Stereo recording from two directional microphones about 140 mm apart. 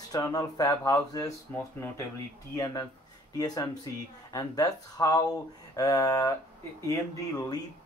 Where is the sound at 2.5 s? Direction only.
25° left (ahead or behind).